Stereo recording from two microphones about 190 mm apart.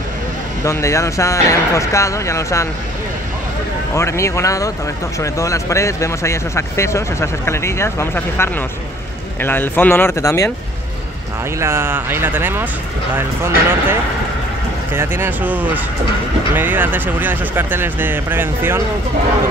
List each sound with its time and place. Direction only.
0.7 s speech: 15° left (ahead or behind)
3.9 s speech: 15° left (ahead or behind)
11.6 s speech: 15° right (ahead or behind)
15.0 s speech: 10° right (ahead or behind)